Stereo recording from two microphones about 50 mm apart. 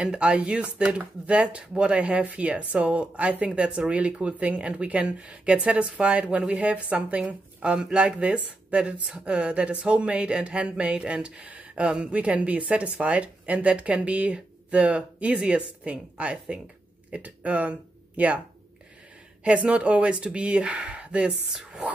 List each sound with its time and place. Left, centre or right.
0.0 s speech: right
19.4 s speech: right